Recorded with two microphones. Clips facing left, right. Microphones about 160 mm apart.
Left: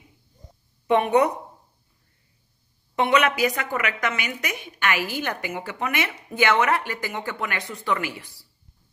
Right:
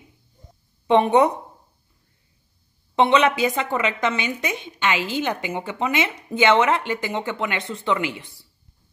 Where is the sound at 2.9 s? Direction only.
25° right (ahead or behind).